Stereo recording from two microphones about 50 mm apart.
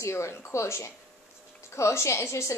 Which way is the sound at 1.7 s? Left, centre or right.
Left.